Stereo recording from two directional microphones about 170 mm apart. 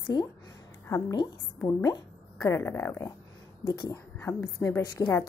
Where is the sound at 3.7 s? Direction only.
25° left (ahead or behind).